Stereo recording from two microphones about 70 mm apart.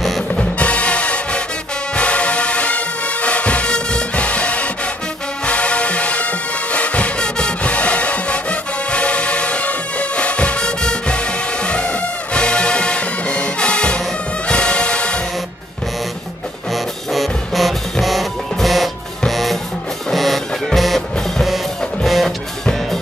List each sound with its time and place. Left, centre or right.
0.3 s music: centre
16.7 s music: centre